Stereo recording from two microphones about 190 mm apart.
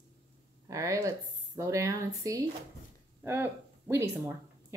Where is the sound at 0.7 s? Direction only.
15° right (ahead or behind).